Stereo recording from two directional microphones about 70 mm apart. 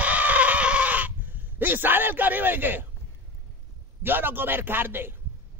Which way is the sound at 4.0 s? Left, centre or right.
Right.